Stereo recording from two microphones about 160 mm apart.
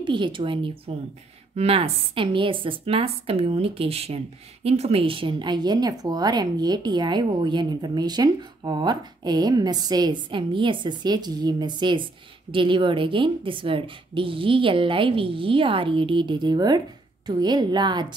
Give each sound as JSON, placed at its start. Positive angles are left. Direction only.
{"t": 0.0, "sound": "a woman's voice", "side_deg": -30}